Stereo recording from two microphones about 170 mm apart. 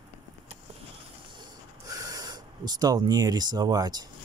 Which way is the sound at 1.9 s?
20° right (ahead or behind).